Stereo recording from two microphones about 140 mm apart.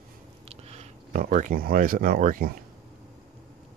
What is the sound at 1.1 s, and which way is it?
Speech, 70° right (ahead or behind).